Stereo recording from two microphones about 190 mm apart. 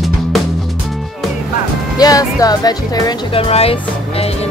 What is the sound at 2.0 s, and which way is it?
Speech, 20° left (ahead or behind).